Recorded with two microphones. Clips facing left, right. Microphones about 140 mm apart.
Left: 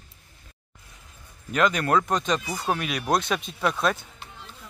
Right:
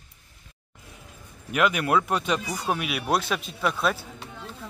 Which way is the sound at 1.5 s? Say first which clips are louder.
Left 1 dB; 10° right (ahead or behind).